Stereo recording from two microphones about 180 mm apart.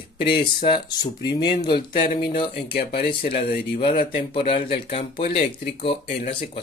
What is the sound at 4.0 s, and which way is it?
Speech, 55° left (ahead or behind).